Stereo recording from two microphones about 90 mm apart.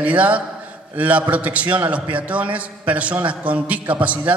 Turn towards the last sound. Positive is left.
turn(degrees=-15)  # may be behind; listen again after turning